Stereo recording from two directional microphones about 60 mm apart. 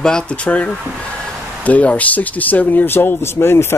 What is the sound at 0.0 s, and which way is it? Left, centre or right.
Speech, centre.